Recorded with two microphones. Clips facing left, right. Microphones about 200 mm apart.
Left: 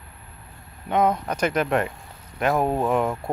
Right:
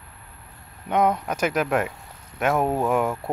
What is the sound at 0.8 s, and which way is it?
Speech, centre (ahead or behind).